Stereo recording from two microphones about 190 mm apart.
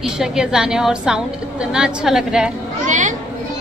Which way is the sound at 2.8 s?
40° right (ahead or behind).